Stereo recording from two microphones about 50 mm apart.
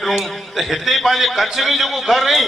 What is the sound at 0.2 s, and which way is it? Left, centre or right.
A man's voice, centre.